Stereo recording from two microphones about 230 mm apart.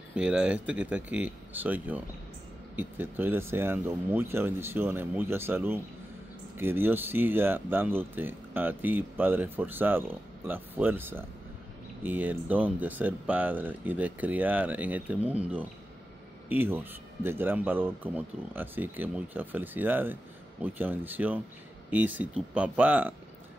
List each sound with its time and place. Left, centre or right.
0.1 s speech: centre